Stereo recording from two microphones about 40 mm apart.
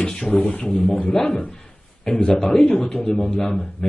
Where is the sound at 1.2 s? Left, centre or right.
Left.